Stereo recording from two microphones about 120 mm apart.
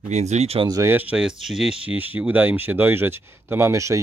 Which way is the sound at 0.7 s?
25° right (ahead or behind).